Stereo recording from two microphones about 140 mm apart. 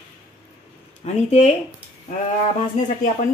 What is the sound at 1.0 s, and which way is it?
Speech, 50° left (ahead or behind).